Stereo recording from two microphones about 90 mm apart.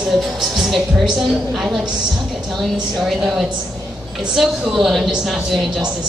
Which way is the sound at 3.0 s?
5° right (ahead or behind).